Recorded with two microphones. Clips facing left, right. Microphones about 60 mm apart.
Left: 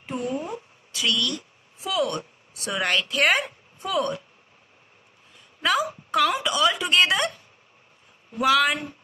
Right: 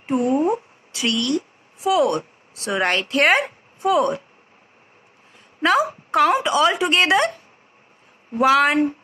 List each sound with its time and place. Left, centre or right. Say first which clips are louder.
0.0 s a sound: right 10 dB; right
1.9 s a woman's voice: right 8 dB; right
5.6 s speech: right 6 dB; right